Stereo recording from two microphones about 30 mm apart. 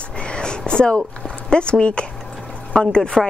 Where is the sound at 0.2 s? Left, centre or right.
Left.